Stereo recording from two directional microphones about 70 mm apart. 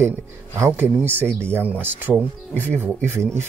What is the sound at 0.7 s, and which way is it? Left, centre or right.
Speech, right.